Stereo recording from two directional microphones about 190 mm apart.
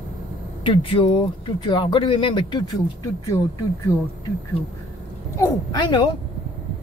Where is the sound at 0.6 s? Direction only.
30° left (ahead or behind).